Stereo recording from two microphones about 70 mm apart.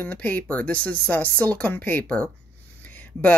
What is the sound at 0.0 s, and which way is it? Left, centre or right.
Speech, left.